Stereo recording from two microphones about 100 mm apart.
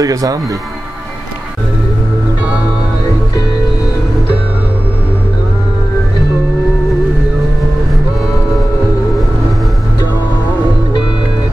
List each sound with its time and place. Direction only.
0.0 s speech: 35° right (ahead or behind)